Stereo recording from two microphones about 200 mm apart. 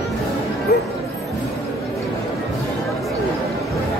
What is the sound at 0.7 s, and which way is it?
Music, 50° left (ahead or behind).